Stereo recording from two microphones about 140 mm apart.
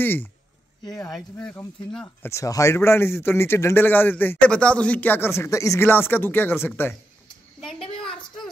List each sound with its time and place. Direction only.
0.0 s a man's voice: 15° left (ahead or behind)
2.2 s a man's voice: 20° left (ahead or behind)
8.0 s a sound: 5° left (ahead or behind)